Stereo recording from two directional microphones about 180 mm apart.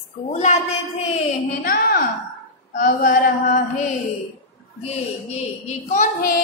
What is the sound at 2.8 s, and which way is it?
Female singing, 50° left (ahead or behind).